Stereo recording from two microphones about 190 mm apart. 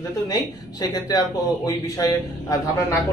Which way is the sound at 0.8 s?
20° left (ahead or behind).